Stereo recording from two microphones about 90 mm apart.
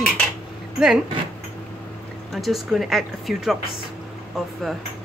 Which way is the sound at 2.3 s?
Centre (ahead or behind).